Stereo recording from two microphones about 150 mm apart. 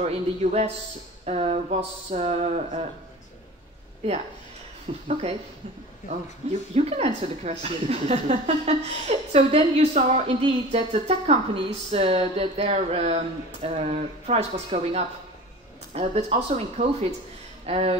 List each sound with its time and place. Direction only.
0.0 s a woman's voice: 45° right (ahead or behind)
4.0 s a woman's voice: 45° right (ahead or behind)
6.7 s a woman's voice: 45° right (ahead or behind)